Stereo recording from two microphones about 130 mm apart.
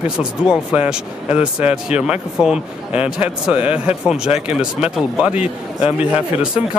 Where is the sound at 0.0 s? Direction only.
10° right (ahead or behind).